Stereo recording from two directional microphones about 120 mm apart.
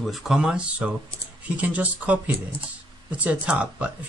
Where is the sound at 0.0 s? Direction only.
Centre (ahead or behind).